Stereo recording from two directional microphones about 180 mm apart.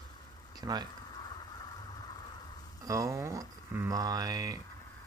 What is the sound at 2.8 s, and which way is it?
Speech, 20° right (ahead or behind).